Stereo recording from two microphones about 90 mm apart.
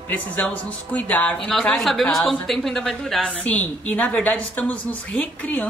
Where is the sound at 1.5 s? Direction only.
5° left (ahead or behind).